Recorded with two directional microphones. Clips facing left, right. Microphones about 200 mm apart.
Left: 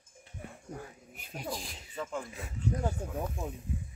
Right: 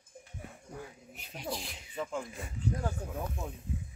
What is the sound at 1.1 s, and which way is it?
Speech, 50° left (ahead or behind).